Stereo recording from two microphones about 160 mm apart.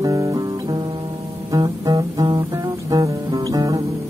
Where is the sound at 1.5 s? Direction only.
20° right (ahead or behind).